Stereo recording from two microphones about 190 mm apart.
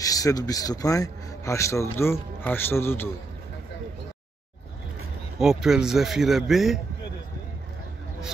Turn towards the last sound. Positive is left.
turn(degrees=0)  # may be behind; listen again after turning